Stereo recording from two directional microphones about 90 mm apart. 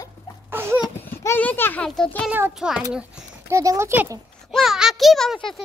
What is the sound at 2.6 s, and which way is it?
Speech, 5° right (ahead or behind).